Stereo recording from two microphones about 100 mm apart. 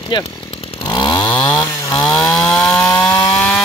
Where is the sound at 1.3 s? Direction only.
10° left (ahead or behind).